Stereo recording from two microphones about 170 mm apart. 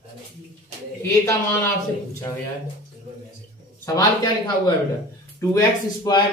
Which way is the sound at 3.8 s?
20° left (ahead or behind).